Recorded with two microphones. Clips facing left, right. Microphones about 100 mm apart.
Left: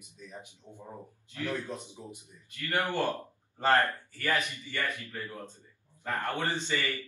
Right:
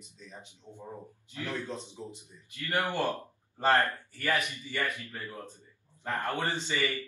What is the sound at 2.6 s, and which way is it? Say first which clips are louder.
Speech: even; 20° right (ahead or behind).